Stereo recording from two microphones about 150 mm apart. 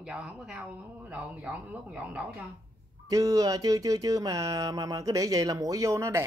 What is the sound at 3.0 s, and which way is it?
Speech, 25° right (ahead or behind).